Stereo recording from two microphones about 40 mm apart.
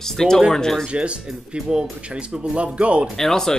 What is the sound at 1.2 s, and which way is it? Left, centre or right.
Speech, centre.